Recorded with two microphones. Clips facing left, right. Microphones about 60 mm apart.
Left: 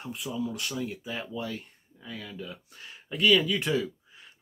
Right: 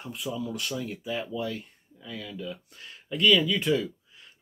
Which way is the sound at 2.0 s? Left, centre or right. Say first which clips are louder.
Right 3 dB; centre.